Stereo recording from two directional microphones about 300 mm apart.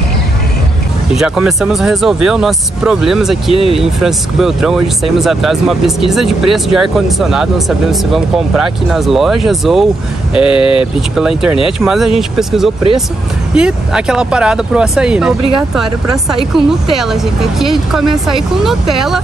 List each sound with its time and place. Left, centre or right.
1.1 s speech: centre
10.6 s speech: centre
11.1 s speech: centre